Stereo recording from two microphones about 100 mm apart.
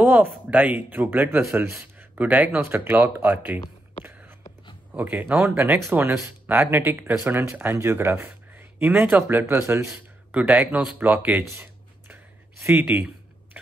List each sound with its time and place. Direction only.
0.0 s speech: 20° right (ahead or behind)
4.9 s a man's voice: 15° right (ahead or behind)
11.0 s a man's voice: 20° right (ahead or behind)
11.4 s a sound: 25° right (ahead or behind)